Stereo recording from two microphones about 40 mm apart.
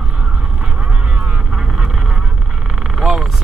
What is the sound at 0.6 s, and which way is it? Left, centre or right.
Vehicle, right.